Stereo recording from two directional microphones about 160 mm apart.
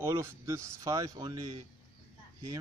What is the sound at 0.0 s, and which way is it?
A man's voice, 15° right (ahead or behind).